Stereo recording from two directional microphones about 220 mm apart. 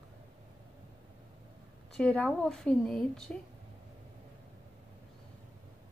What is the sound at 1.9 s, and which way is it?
A woman's voice, 5° left (ahead or behind).